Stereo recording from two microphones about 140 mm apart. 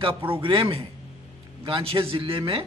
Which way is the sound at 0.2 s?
40° right (ahead or behind).